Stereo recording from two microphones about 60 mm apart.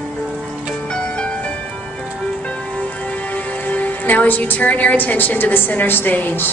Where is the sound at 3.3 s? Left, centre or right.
Left.